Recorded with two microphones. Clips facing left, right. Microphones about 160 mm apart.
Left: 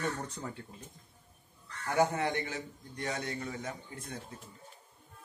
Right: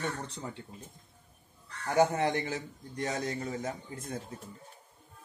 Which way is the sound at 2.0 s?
30° right (ahead or behind).